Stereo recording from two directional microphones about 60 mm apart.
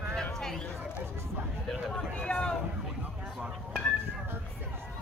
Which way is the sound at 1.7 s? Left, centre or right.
Centre.